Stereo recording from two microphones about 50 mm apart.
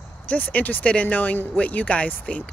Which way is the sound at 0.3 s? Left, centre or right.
Left.